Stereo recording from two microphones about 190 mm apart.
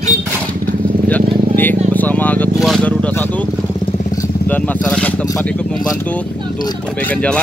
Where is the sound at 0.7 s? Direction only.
10° left (ahead or behind).